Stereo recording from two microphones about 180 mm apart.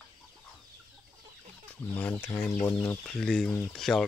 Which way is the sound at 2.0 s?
10° left (ahead or behind).